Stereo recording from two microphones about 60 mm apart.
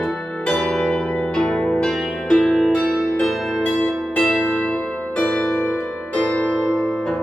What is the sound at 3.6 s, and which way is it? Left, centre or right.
Music, left.